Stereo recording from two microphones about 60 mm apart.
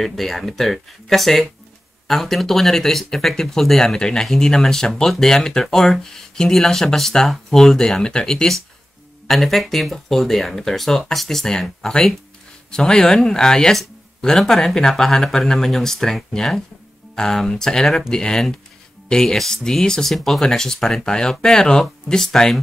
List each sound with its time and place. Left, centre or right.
0.0 s speech: centre